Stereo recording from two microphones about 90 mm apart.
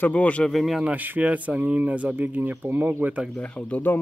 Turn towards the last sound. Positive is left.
turn(degrees=20)  # may be behind; listen again after turning